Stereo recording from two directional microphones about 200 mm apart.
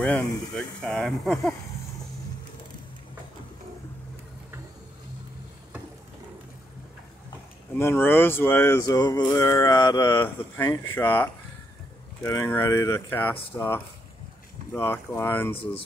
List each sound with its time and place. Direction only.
0.0 s speech: 5° left (ahead or behind)
7.7 s speech: 10° left (ahead or behind)
15.5 s speech: 25° left (ahead or behind)